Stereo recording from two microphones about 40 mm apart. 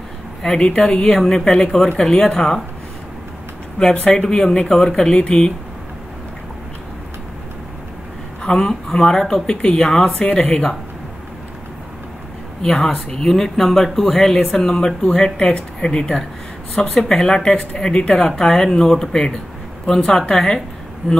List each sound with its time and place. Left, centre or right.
0.5 s speech: left
3.8 s speech: left
8.4 s speech: centre
12.6 s speech: centre